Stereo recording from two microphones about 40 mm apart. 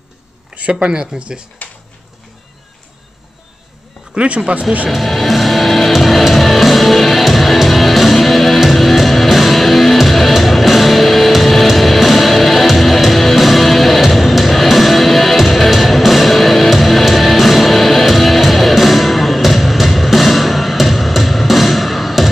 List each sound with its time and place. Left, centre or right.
0.6 s speech: right
1.6 s a sound: left
4.1 s speech: right
4.8 s music: centre